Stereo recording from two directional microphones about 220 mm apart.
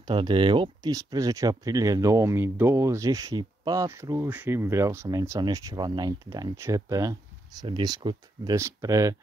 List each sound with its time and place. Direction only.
0.0 s speech: 20° right (ahead or behind)